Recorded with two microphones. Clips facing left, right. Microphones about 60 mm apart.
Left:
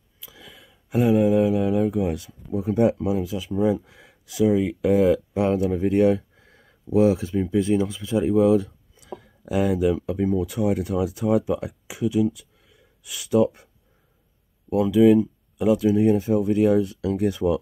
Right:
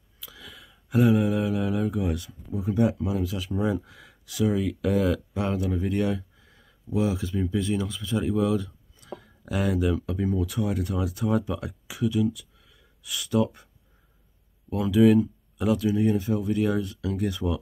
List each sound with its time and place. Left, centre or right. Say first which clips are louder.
0.2 s a sound: right 1 dB; centre
2.5 s speech: left 4 dB; left; by 3.8 s centre
3.8 s speech: even; centre
4.6 s speech: left 6 dB; left
5.7 s a sound: left 7 dB; left
7.2 s speech: left 5 dB; left
8.3 s speech: left 8 dB; left
8.9 s a sound: left 2 dB; centre
9.9 s speech: left 4 dB; centre
14.8 s speech: left 3 dB; centre
15.1 s a sound: left 2 dB; centre
16.1 s speech: left 5 dB; left
16.4 s speech: left 6 dB; centre